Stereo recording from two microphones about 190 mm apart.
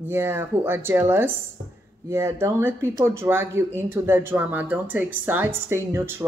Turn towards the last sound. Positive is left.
turn(degrees=-10)  # may be behind; listen again after turning